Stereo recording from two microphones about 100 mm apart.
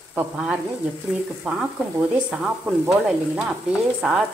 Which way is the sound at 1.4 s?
5° right (ahead or behind).